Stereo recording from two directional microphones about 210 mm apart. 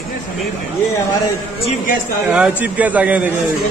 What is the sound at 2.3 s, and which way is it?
Speech, 5° right (ahead or behind).